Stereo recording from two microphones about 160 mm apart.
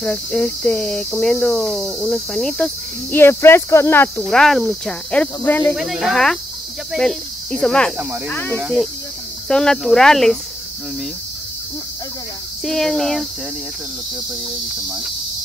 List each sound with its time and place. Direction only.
0.0 s cricket: 5° left (ahead or behind)
4.2 s speech: 5° left (ahead or behind)
5.8 s speech: centre (ahead or behind)
6.9 s cricket: 5° left (ahead or behind)
9.5 s speech: 5° left (ahead or behind)
12.6 s speech: centre (ahead or behind)